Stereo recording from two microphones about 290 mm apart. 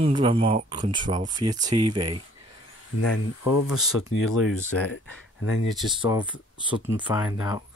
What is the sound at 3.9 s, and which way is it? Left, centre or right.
Speech, left.